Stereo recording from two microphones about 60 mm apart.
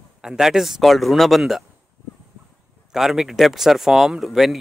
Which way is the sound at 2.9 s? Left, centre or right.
Centre.